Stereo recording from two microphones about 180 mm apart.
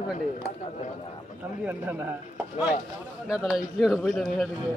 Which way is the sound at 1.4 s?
10° right (ahead or behind).